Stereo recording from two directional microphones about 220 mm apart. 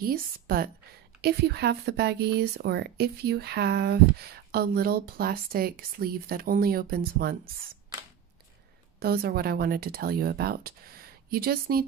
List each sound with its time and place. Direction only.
0.0 s speech: 40° right (ahead or behind)
9.0 s speech: 45° right (ahead or behind)